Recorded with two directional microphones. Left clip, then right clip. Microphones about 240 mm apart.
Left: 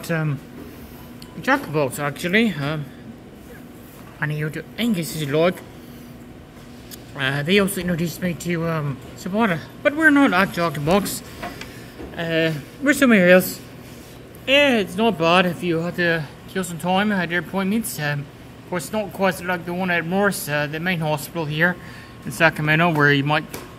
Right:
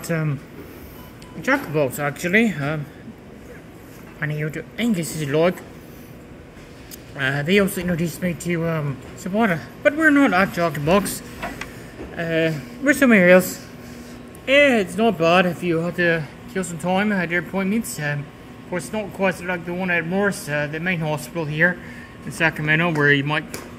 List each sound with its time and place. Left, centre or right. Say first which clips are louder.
0.0 s a man's voice: even; centre
1.4 s a man's voice: even; centre
4.2 s a man's voice: even; centre
7.2 s a man's voice: even; centre